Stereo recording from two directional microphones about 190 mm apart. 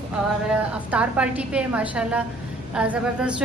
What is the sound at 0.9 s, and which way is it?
A woman's voice, 5° right (ahead or behind).